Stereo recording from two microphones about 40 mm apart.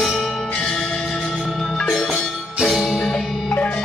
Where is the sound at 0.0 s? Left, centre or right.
Centre.